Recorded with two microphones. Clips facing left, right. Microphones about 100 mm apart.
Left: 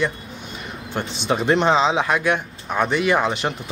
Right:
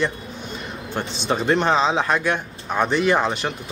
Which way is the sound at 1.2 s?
10° left (ahead or behind).